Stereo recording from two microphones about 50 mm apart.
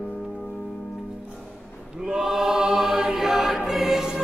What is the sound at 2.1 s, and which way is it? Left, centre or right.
Choir, centre.